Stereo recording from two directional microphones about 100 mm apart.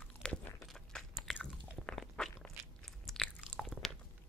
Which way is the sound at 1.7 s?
5° left (ahead or behind).